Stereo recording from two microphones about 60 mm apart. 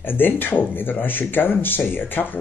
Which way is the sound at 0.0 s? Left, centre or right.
Left.